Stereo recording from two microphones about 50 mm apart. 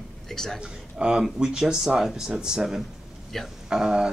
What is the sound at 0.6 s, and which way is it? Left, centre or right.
Speech, centre.